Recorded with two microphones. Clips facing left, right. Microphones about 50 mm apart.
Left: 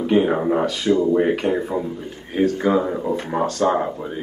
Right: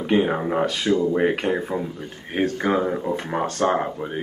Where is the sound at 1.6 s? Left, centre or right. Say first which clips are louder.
Left 3 dB; centre.